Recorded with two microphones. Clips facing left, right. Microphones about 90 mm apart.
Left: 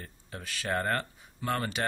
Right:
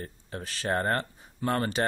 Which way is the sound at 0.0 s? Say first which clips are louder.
Right 5 dB; 35° right (ahead or behind).